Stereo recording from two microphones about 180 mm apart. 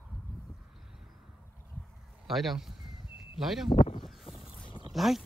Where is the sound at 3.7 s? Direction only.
35° left (ahead or behind).